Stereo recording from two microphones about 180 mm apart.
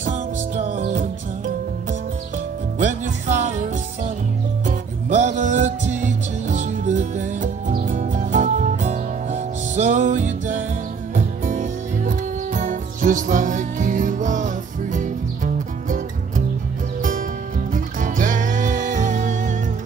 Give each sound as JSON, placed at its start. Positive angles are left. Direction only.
{"t": 0.0, "sound": "music", "side_deg": -40}